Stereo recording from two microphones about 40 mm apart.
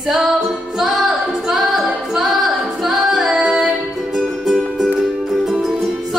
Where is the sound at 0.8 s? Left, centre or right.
Centre.